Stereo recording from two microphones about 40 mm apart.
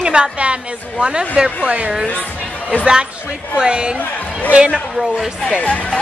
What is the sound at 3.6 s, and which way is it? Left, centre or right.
Speech, right.